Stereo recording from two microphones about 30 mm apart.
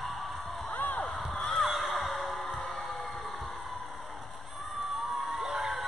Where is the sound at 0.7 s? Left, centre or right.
Left.